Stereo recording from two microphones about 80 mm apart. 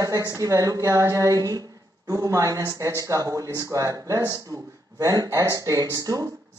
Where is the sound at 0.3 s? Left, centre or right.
Right.